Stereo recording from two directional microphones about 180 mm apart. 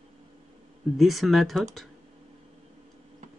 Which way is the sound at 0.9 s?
Centre (ahead or behind).